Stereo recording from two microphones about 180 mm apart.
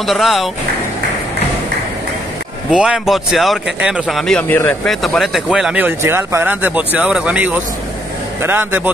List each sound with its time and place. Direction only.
0.0 s speech: centre (ahead or behind)
2.7 s speech: 5° right (ahead or behind)